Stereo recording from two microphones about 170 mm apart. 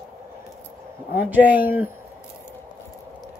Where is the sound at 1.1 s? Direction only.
10° right (ahead or behind).